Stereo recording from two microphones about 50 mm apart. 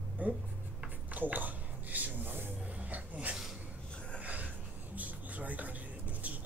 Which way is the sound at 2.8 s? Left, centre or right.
Right.